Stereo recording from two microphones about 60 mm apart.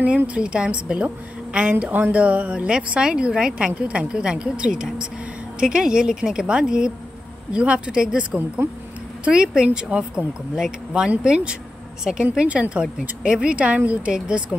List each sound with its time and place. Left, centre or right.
0.3 s speech: centre
8.3 s speech: right
9.2 s speech: centre